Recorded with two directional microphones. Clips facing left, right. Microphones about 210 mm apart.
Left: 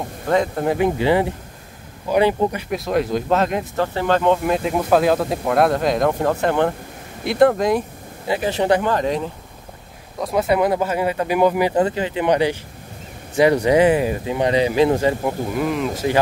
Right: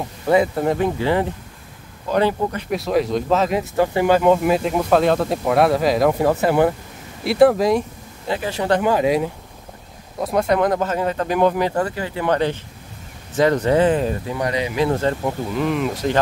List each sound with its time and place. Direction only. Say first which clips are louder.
0.3 s speech: right 2 dB; 5° right (ahead or behind)
0.7 s speech: left 2 dB; 15° left (ahead or behind)
2.7 s speech: right 1 dB; centre (ahead or behind)
3.7 s speech: right 5 dB; 10° right (ahead or behind)
8.3 s speech: left 3 dB; 20° left (ahead or behind)
8.8 s speech: right 3 dB; 10° right (ahead or behind); by 11.8 s 10° left (ahead or behind)
11.8 s speech: left 3 dB; 20° left (ahead or behind)
14.3 s speech: left 5 dB; 25° left (ahead or behind)
14.9 s speech: left 2 dB; 10° left (ahead or behind)